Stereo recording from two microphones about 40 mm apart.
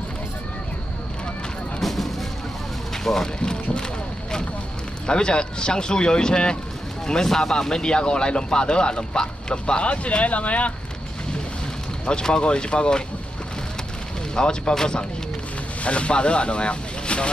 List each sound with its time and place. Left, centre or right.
1.8 s a sound: centre
3.0 s speech: centre
5.0 s speech: left
12.1 s speech: centre
14.3 s speech: left
15.8 s speech: left